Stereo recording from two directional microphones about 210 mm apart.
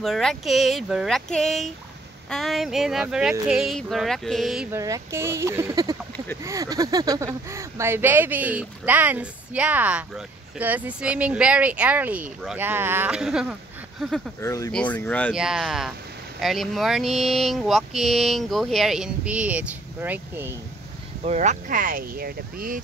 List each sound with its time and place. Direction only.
0.0 s speech: centre (ahead or behind)
4.7 s speech: 15° right (ahead or behind)
14.4 s speech: 15° left (ahead or behind); by 20.5 s 10° right (ahead or behind)
21.2 s speech: 35° right (ahead or behind)